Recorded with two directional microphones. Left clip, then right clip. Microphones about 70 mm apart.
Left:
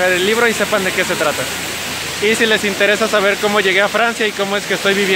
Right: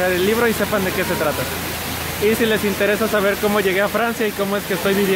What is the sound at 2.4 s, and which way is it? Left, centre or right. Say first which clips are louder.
Speech: left 4 dB; left.